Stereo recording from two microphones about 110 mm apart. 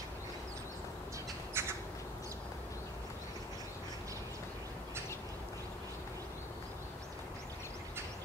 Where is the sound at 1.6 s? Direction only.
20° right (ahead or behind).